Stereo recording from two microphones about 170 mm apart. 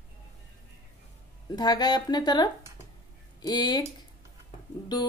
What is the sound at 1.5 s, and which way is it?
A woman's voice, 25° left (ahead or behind).